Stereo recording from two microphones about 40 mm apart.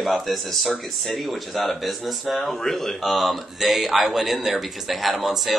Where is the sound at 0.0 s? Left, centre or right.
Centre.